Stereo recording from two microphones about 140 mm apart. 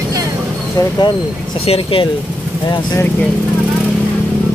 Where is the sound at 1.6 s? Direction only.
40° left (ahead or behind).